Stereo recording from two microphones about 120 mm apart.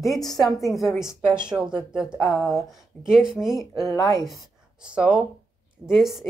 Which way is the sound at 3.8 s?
25° left (ahead or behind).